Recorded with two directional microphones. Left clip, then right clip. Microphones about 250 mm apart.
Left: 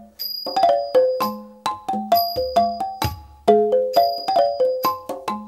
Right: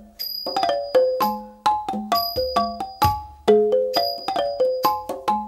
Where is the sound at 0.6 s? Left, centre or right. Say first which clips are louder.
Left 3 dB; centre.